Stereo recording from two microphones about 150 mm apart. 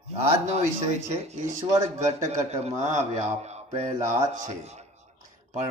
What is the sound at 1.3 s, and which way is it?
Speech, 50° right (ahead or behind).